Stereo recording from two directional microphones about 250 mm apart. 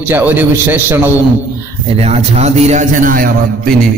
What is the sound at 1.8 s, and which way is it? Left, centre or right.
A man's voice, right.